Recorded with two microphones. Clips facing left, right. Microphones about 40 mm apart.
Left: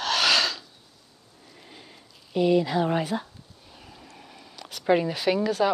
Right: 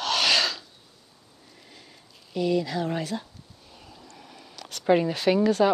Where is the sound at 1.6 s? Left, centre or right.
Centre.